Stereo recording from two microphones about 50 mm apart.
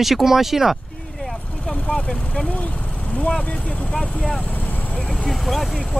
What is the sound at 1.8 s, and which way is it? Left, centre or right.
Speech, centre.